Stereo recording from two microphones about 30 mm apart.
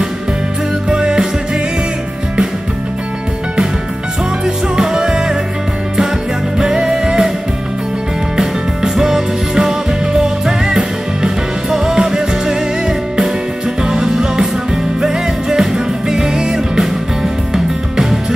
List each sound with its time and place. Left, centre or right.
0.8 s music: right
4.7 s music: centre
6.6 s music: right
8.4 s music: centre